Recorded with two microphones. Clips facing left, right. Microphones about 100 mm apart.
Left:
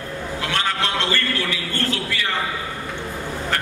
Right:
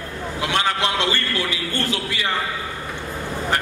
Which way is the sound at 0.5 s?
15° right (ahead or behind).